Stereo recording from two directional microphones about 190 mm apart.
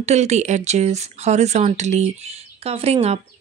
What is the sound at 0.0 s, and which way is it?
Speech, 35° right (ahead or behind).